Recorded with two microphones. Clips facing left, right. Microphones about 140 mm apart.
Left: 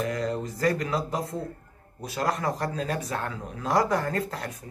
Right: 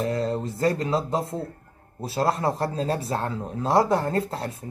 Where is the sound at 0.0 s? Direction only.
30° right (ahead or behind).